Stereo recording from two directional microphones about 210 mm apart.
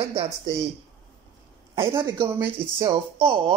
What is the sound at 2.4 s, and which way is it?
Speech, 25° right (ahead or behind).